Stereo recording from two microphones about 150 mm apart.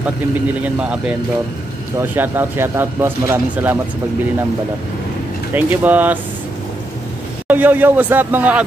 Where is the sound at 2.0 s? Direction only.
15° right (ahead or behind).